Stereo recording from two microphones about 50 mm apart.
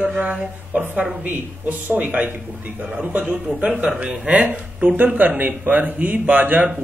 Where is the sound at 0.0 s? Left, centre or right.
Right.